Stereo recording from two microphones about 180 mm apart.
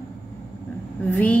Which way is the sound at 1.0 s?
10° left (ahead or behind).